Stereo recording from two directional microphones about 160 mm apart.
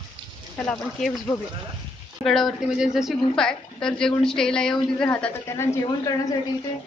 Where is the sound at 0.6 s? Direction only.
5° left (ahead or behind).